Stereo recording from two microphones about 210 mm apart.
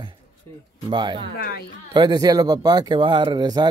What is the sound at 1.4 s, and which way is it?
Speech, 50° left (ahead or behind).